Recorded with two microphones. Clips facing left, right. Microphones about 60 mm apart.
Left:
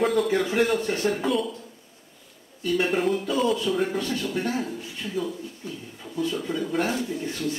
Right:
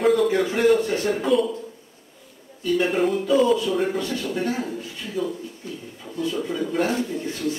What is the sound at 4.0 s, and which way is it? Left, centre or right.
Speech, right.